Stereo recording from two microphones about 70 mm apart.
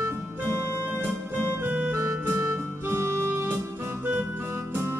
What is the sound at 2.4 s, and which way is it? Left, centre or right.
Music, right.